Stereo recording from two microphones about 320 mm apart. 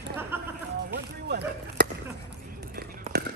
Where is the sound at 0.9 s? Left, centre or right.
Right.